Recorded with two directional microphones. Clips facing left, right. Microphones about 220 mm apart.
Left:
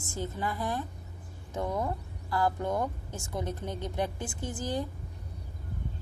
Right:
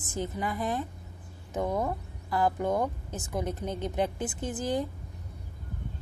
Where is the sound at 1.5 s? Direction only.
20° right (ahead or behind).